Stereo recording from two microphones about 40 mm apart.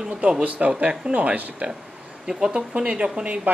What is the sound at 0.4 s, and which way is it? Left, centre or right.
Speech, right.